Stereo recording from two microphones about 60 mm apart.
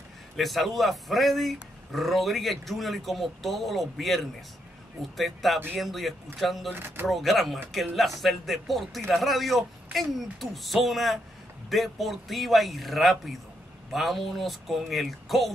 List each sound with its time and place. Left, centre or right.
0.4 s speech: centre
6.7 s speech: right
7.1 s speech: centre